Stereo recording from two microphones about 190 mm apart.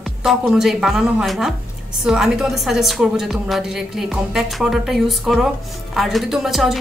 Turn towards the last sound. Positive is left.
turn(degrees=0)  # may be behind; listen again after turning